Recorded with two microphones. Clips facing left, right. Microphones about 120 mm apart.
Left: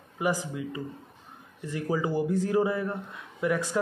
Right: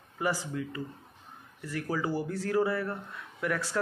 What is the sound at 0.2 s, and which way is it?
Speech, 15° left (ahead or behind).